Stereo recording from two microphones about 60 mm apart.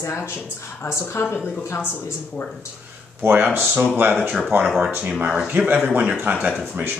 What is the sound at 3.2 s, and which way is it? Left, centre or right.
Speech, right.